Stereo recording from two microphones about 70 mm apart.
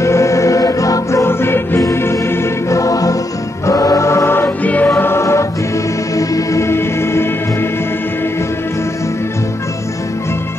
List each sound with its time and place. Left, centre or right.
0.0 s music: left
1.2 s music: left
2.8 s choir: left
6.1 s music: left